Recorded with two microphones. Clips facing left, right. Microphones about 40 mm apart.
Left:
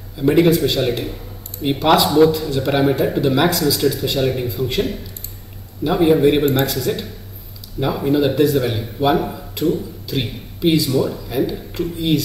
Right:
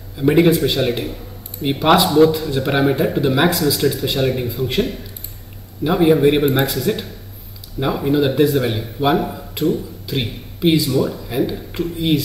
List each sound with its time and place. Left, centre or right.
0.2 s speech: centre